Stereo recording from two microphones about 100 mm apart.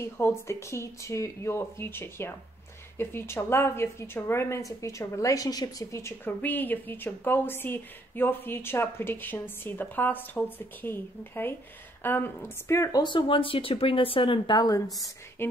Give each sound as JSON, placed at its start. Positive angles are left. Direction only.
{"t": 0.0, "sound": "a woman's voice", "side_deg": 25}
{"t": 6.4, "sound": "a woman's voice", "side_deg": 20}
{"t": 13.0, "sound": "speech", "side_deg": 55}